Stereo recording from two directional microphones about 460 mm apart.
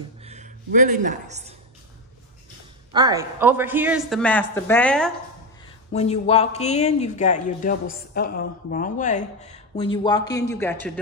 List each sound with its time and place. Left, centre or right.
0.2 s speech: centre
2.9 s speech: centre
5.9 s speech: centre